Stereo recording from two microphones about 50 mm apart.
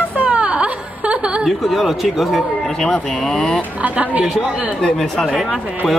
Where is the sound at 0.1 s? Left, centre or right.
Right.